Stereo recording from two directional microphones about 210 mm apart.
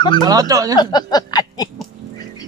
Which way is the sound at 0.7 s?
20° left (ahead or behind).